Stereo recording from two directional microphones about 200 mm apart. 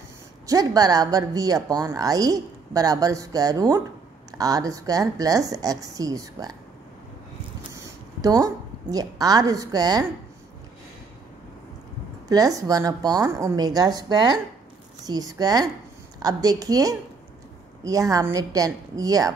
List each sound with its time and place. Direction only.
0.5 s a woman's voice: 20° right (ahead or behind)
7.7 s a sound: 15° right (ahead or behind)
8.9 s a woman's voice: 20° right (ahead or behind)
12.3 s a woman's voice: 20° right (ahead or behind)